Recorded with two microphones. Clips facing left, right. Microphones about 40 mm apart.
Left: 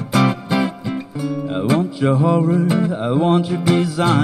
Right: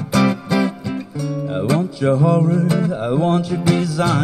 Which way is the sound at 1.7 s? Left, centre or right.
Centre.